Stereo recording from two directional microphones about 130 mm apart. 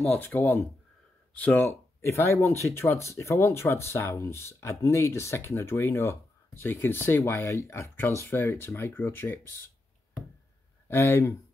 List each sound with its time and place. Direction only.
0.2 s speech: 15° left (ahead or behind)
10.9 s speech: 15° left (ahead or behind)